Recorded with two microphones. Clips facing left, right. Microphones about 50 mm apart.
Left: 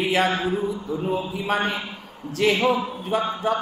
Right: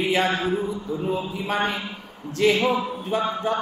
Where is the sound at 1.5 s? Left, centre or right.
Centre.